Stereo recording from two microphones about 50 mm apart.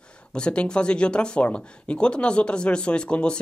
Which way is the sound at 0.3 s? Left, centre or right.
Centre.